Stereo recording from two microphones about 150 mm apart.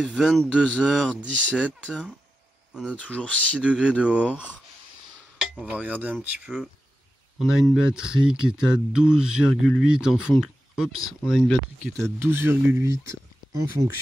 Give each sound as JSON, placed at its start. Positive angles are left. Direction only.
{"t": 0.0, "sound": "speech", "side_deg": 5}
{"t": 3.0, "sound": "speech", "side_deg": 10}
{"t": 3.6, "sound": "speech", "side_deg": -5}
{"t": 5.7, "sound": "speech", "side_deg": -10}
{"t": 12.0, "sound": "speech", "side_deg": -15}